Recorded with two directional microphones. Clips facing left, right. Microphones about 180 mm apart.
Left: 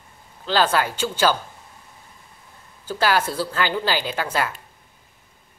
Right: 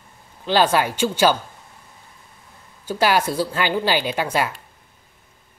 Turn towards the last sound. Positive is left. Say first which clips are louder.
# right 3 dB
turn(degrees=-15)  # may be behind; listen again after turning